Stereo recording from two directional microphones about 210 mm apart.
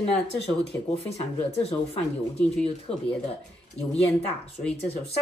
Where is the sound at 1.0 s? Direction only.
30° left (ahead or behind).